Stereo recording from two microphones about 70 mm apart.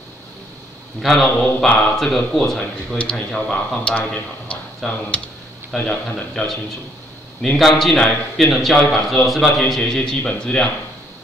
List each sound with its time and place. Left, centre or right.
1.0 s a man's voice: centre
3.8 s speech: centre
5.7 s a man's voice: centre